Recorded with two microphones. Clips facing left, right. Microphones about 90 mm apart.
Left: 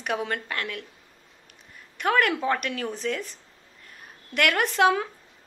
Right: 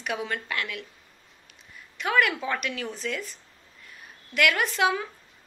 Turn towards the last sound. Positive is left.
turn(degrees=55)  # may be behind; listen again after turning